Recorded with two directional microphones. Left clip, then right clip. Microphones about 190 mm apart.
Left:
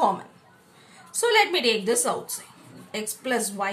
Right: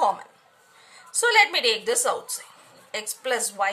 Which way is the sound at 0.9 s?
30° right (ahead or behind).